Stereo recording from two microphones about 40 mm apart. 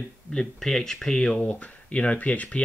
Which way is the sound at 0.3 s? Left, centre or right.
Centre.